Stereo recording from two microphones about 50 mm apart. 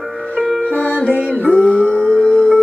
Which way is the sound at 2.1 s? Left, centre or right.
Centre.